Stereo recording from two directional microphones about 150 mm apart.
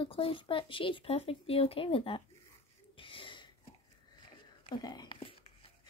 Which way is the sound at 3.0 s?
35° left (ahead or behind).